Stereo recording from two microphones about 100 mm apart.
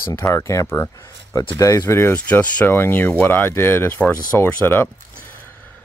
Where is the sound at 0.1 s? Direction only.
30° left (ahead or behind).